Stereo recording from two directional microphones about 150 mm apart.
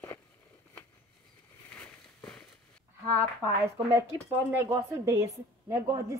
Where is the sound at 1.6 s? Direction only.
10° left (ahead or behind).